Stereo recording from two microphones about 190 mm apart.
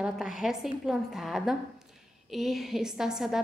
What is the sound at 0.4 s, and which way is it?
A woman's voice, centre (ahead or behind).